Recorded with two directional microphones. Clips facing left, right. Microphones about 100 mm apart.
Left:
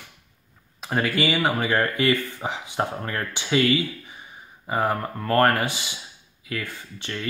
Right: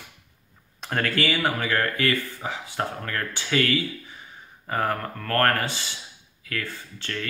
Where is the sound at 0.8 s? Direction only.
10° left (ahead or behind).